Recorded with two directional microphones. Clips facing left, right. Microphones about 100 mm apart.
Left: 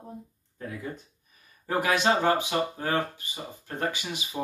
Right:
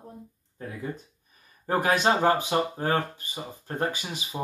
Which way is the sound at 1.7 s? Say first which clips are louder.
Right 1 dB; 35° right (ahead or behind).